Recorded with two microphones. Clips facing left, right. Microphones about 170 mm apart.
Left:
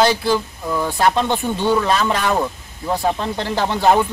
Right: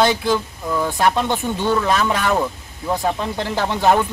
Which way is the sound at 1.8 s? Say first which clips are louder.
Even; 5° right (ahead or behind).